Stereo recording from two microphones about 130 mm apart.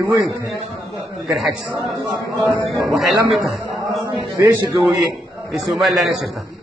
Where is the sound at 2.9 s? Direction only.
Centre (ahead or behind).